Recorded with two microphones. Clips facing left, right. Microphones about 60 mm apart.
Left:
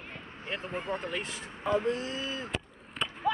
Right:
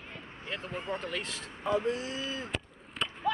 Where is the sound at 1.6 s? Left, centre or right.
Left.